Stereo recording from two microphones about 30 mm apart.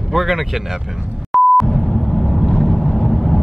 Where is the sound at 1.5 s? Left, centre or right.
Centre.